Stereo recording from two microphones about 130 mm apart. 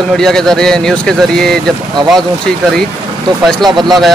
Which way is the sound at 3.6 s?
35° right (ahead or behind).